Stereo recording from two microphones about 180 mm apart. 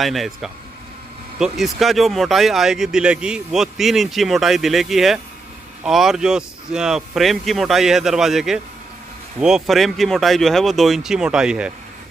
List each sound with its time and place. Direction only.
0.0 s speech: centre (ahead or behind)